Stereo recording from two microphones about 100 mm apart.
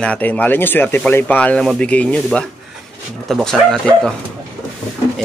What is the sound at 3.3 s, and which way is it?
Speech, 5° left (ahead or behind).